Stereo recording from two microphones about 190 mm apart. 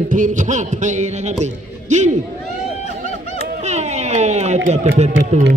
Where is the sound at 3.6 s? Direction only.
35° right (ahead or behind).